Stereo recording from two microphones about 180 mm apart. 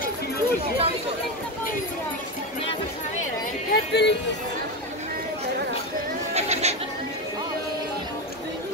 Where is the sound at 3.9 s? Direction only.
70° left (ahead or behind).